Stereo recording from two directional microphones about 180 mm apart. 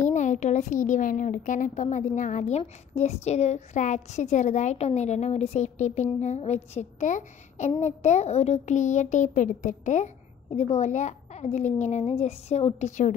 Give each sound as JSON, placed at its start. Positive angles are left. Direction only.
{"t": 0.1, "sound": "a woman's voice", "side_deg": 40}